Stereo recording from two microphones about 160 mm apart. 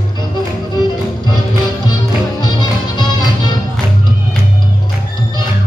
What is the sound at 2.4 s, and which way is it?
Music, 25° left (ahead or behind).